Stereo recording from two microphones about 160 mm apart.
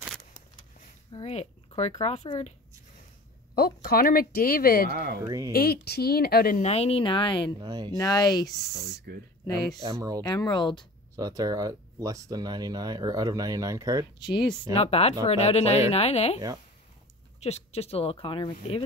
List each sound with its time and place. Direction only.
1.1 s speech: 40° left (ahead or behind)
3.5 s speech: 70° left (ahead or behind)
4.9 s speech: 80° right
5.2 s speech: 25° right (ahead or behind)
5.5 s speech: 75° left (ahead or behind)
6.6 s speech: 40° left (ahead or behind)
7.6 s speech: 25° right (ahead or behind)
8.0 s speech: 25° left (ahead or behind)
9.1 s speech: 80° right
9.8 s speech: 20° right (ahead or behind)
10.2 s speech: 25° left (ahead or behind)
11.1 s speech: 25° right (ahead or behind)
14.7 s speech: 40° left (ahead or behind)
17.4 s speech: 40° left (ahead or behind)